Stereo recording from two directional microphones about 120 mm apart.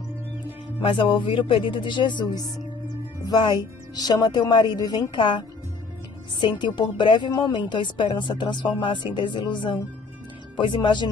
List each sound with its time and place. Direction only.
0.8 s a woman's voice: 45° left (ahead or behind)
6.4 s a woman's voice: 40° left (ahead or behind)